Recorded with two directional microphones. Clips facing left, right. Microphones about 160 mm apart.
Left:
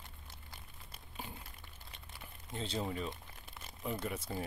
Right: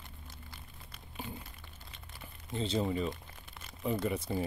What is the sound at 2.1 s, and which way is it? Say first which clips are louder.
Speech: right 6 dB; 5° left (ahead or behind).